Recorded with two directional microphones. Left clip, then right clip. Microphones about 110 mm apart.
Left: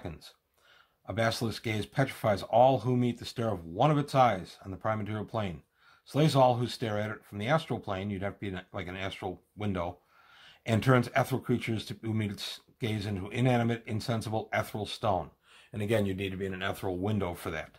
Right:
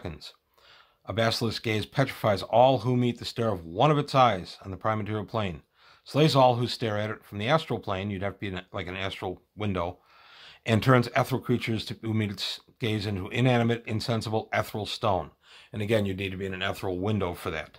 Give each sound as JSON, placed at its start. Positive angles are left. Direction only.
{"t": 0.0, "sound": "speech", "side_deg": -45}